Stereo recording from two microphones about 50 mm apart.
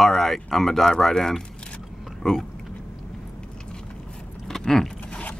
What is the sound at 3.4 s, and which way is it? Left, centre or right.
Biting, centre.